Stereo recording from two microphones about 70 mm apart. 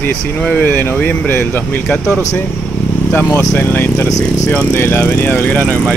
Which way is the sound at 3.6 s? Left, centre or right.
Left.